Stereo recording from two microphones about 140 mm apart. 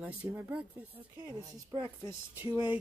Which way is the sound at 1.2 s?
30° right (ahead or behind).